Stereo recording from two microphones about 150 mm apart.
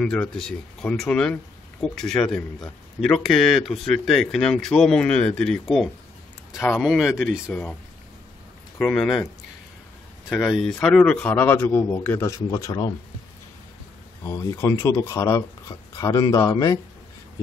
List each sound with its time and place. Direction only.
0.0 s a man's voice: 5° left (ahead or behind)
8.7 s speech: 5° left (ahead or behind)
10.3 s a man's voice: centre (ahead or behind); by 12.9 s 25° left (ahead or behind)
14.2 s speech: 20° left (ahead or behind)